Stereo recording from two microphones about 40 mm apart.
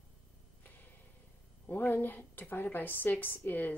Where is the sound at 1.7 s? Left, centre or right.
Left.